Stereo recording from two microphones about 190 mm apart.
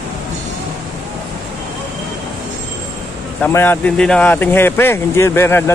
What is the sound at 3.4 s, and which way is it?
Speech, 10° left (ahead or behind).